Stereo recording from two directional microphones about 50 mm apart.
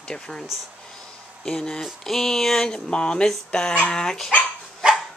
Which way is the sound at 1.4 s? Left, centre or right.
Centre.